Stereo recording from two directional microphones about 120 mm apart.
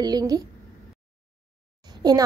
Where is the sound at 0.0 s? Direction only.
35° right (ahead or behind).